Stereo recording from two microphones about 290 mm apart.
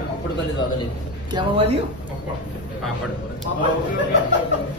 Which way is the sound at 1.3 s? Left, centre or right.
Centre.